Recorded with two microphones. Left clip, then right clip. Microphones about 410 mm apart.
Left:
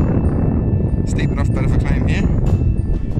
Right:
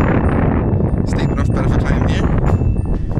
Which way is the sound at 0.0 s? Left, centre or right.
Right.